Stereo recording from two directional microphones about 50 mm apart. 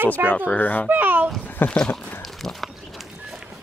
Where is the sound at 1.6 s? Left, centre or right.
Left.